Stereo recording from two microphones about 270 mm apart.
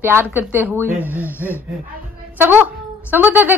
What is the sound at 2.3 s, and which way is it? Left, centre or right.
A woman's voice, centre.